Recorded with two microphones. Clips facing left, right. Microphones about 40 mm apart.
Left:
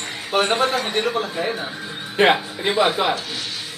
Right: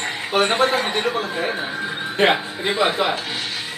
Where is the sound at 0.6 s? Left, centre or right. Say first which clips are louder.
Right 2 dB; right.